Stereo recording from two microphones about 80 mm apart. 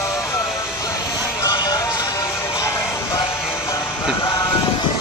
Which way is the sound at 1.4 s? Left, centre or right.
Left.